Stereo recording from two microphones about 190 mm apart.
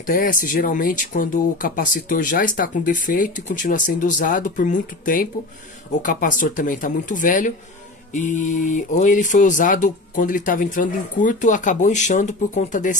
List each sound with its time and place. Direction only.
0.0 s speech: 45° left (ahead or behind)